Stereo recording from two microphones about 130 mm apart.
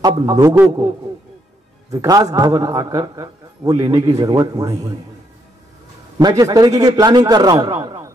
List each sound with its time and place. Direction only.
0.0 s a man's voice: 30° right (ahead or behind)
6.1 s a man's voice: 30° right (ahead or behind)